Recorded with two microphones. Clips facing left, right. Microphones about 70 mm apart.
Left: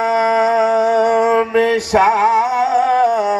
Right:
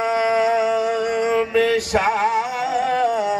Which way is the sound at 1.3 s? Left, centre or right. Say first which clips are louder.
Left 4 dB; left.